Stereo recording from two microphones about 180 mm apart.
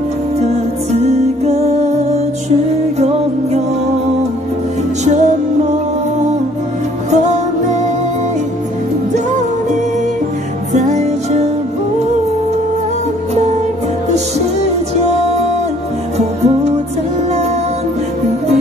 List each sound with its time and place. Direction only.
1.0 s music: 35° right (ahead or behind)
5.0 s music: 40° right (ahead or behind)
7.1 s music: 40° right (ahead or behind)
10.7 s music: 40° right (ahead or behind)
15.0 s music: 40° right (ahead or behind)